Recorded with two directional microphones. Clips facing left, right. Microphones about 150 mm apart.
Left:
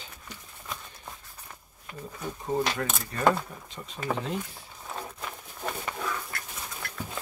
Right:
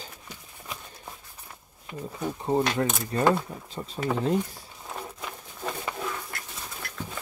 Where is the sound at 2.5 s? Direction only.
30° right (ahead or behind).